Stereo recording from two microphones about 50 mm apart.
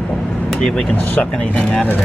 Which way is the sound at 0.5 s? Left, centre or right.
Centre.